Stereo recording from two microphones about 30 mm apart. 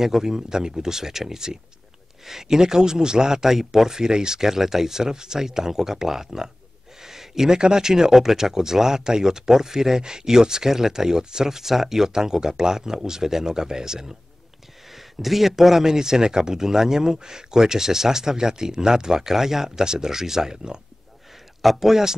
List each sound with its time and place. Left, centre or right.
0.0 s speech: centre
3.4 s speech: centre
7.0 s a sound: centre
7.5 s speech: right
14.9 s speech: centre; by 20.8 s right
21.5 s speech: centre